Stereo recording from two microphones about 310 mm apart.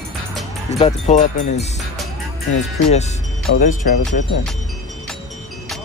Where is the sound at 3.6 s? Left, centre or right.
Left.